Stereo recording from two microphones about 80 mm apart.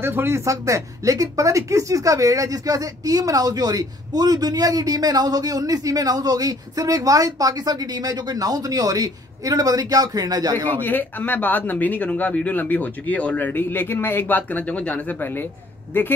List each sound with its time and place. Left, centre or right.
0.0 s speech: right
0.5 s speech: right
10.8 s speech: left